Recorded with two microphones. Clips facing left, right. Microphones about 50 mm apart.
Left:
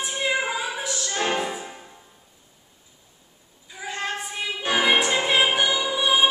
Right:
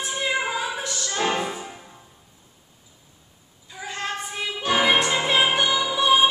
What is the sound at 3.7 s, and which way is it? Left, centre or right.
Child singing, centre.